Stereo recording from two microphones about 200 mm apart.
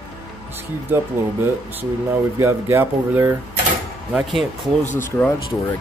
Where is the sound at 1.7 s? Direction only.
10° right (ahead or behind).